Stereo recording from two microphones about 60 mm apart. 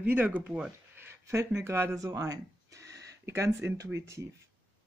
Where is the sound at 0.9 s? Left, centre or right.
Right.